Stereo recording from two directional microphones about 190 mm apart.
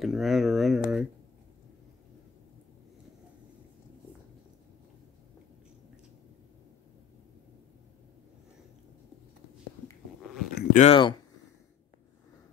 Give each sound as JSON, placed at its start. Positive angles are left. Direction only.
{"t": 0.0, "sound": "speech", "side_deg": 0}
{"t": 10.5, "sound": "a sound", "side_deg": 55}
{"t": 10.8, "sound": "speech", "side_deg": 30}